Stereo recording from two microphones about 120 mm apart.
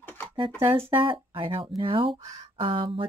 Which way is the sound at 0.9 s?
45° right (ahead or behind).